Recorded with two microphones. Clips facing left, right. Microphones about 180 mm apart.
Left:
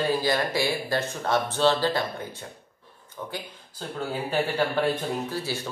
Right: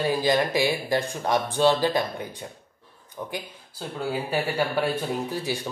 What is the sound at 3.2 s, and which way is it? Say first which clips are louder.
Speech: right 2 dB; 15° right (ahead or behind).